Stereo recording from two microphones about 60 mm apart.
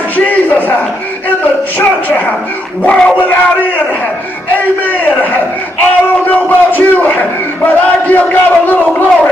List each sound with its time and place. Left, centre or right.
0.1 s a sound: left
2.8 s speech: centre
5.2 s a man's voice: left